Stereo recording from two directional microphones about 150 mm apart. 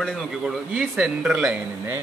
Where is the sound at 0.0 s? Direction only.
Centre (ahead or behind).